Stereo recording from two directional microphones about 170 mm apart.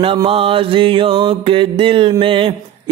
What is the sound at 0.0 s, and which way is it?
Mantra, 30° right (ahead or behind).